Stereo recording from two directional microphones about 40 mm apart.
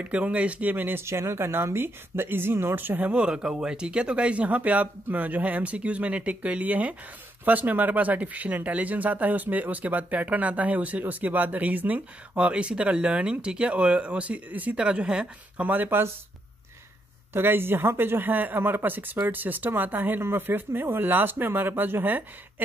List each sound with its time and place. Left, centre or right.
0.3 s speech: right
0.7 s speech: right
3.1 s speech: right
14.5 s speech: right
14.8 s speech: right
15.6 s speech: right
17.3 s speech: right
18.6 s speech: right
20.2 s speech: right